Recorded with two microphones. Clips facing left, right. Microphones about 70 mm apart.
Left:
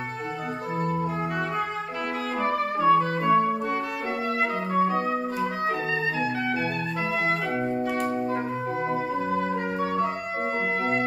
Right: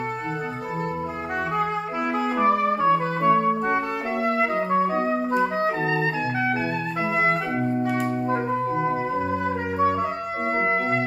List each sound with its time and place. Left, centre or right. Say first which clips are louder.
2.3 s music: right 5 dB; right
4.3 s music: right 5 dB; right
9.3 s music: right 1 dB; centre